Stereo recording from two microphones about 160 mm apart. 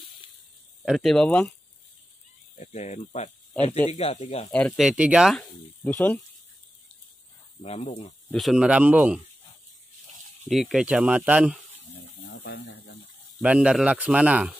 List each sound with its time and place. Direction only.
0.8 s speech: centre (ahead or behind)
2.5 s speech: 45° left (ahead or behind)
3.6 s speech: 10° left (ahead or behind)
3.9 s speech: 40° left (ahead or behind)
4.5 s speech: 5° left (ahead or behind)
4.8 s speech: 5° right (ahead or behind)
5.9 s speech: 10° left (ahead or behind)
7.6 s speech: 40° left (ahead or behind)
8.3 s speech: centre (ahead or behind)
10.5 s speech: centre (ahead or behind)
12.3 s snake: 85° left
13.4 s speech: 5° right (ahead or behind)